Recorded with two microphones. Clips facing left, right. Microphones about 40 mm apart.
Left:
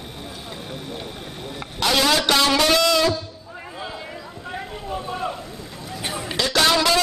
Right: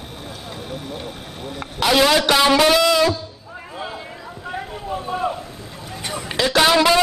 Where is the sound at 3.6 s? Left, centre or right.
Centre.